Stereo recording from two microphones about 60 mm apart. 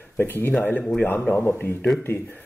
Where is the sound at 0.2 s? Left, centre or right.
Left.